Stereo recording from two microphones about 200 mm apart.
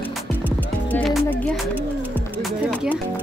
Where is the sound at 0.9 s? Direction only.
5° left (ahead or behind).